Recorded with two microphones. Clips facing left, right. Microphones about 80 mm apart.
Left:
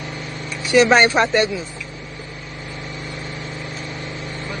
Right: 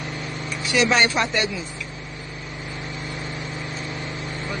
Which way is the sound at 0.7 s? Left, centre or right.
Left.